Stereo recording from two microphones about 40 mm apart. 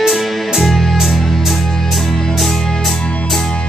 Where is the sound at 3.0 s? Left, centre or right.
Left.